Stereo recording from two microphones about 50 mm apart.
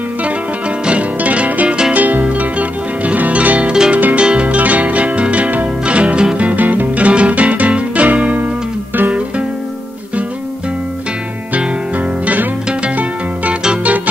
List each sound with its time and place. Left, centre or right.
0.8 s music: right